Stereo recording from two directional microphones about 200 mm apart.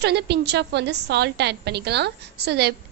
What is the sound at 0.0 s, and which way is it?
A woman's voice, 55° right (ahead or behind).